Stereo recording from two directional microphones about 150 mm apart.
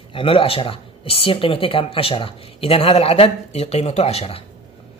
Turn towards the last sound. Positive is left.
turn(degrees=40)  # may be behind; listen again after turning